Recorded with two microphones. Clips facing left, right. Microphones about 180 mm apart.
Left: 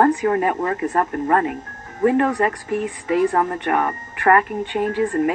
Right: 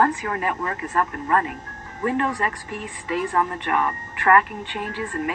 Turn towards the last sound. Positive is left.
turn(degrees=45)  # may be behind; listen again after turning